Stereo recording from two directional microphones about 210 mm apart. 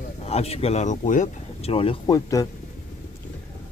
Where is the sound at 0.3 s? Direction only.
30° left (ahead or behind).